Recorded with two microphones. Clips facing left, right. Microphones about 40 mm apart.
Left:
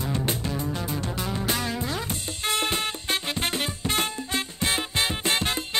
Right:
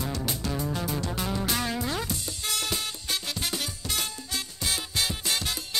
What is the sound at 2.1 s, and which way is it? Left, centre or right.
Music, left.